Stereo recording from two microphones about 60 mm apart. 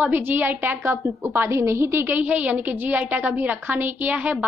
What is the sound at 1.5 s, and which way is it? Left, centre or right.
Speech, right.